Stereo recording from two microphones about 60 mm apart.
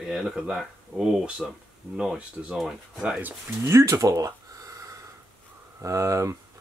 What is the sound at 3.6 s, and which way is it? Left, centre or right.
Speech, right.